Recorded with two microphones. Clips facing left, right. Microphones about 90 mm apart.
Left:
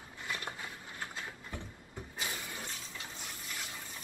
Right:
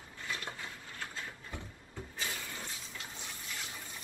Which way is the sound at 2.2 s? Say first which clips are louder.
Left 1 dB; 20° left (ahead or behind).